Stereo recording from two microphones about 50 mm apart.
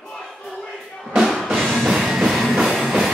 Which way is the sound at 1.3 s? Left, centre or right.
Centre.